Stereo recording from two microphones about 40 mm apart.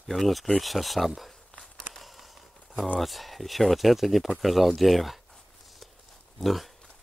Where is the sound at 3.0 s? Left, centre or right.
Centre.